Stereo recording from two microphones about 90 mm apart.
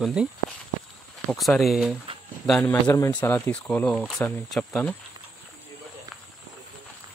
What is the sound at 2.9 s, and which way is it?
Speech, 30° left (ahead or behind).